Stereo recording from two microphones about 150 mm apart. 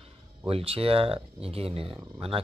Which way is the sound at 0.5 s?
40° right (ahead or behind).